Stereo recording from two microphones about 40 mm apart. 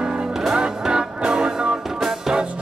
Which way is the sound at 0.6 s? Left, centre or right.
Right.